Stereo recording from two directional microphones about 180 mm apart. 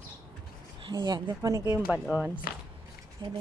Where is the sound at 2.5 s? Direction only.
55° left (ahead or behind).